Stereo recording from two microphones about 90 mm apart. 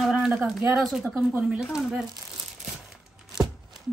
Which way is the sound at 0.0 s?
Centre (ahead or behind).